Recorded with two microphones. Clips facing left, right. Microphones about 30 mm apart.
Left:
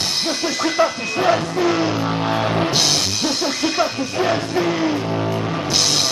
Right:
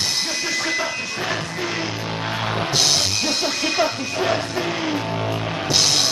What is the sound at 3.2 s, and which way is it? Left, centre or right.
Music, centre.